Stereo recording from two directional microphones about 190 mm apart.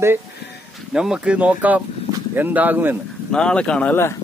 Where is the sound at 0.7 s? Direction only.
5° right (ahead or behind).